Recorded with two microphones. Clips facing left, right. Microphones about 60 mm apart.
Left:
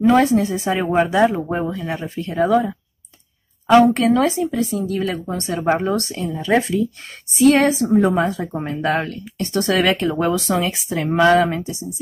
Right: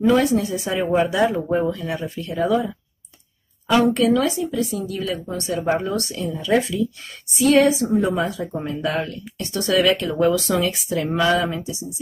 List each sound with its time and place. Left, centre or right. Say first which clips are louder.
0.0 s a woman's voice: left 3 dB; left
10.0 s speech: even; left
11.2 s a woman's voice: left 9 dB; left